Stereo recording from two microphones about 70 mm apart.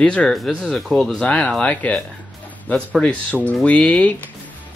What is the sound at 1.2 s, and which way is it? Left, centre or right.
Speech, left.